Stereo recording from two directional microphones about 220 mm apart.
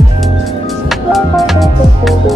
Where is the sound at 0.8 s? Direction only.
Centre (ahead or behind).